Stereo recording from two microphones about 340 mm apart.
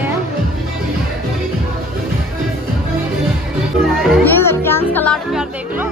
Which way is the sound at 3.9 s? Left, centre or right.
Centre.